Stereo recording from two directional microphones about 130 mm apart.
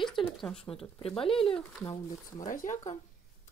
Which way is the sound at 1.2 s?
45° left (ahead or behind).